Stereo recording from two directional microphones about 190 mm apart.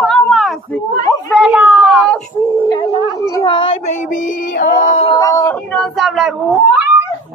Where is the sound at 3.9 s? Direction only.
40° left (ahead or behind).